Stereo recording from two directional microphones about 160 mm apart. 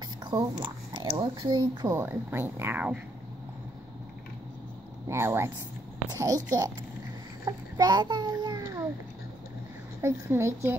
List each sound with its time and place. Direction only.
0.2 s speech: 25° right (ahead or behind); by 3.0 s 10° right (ahead or behind)
5.0 s speech: 15° right (ahead or behind)
7.4 s a sound: 25° right (ahead or behind)
10.3 s speech: 15° right (ahead or behind)